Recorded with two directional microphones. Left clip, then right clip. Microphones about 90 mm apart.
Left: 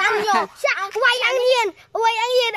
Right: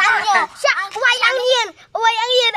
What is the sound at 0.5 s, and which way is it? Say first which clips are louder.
Speech: right 3 dB; 20° left (ahead or behind).